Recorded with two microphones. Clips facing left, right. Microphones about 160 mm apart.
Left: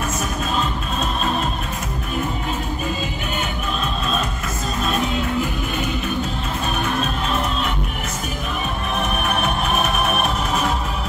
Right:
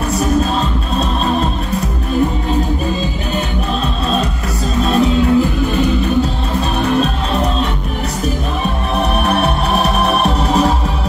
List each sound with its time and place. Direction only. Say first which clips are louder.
4.8 s music: right 10 dB; 35° right (ahead or behind)
9.1 s music: right 7 dB; 35° right (ahead or behind)